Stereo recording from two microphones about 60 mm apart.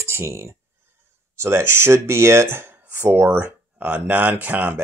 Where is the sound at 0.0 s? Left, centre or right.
Right.